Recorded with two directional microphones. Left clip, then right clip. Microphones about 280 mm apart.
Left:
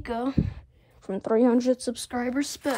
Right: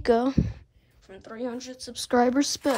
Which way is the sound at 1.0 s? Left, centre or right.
Centre.